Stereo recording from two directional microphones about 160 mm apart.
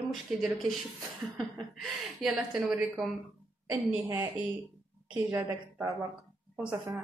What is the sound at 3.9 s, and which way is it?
Speech, 15° right (ahead or behind).